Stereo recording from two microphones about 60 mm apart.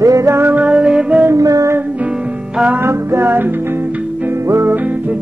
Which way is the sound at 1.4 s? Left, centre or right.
Right.